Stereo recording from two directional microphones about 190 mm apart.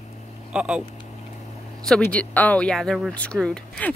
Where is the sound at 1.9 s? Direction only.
5° left (ahead or behind).